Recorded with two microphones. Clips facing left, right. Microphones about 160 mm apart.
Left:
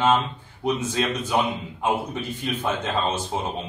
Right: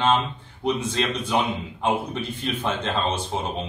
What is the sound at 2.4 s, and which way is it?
Speech, 10° left (ahead or behind).